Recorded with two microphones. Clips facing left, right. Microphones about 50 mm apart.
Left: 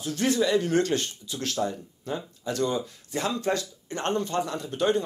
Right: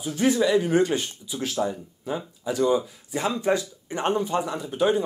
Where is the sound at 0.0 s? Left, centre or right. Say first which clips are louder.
Right 3 dB; centre.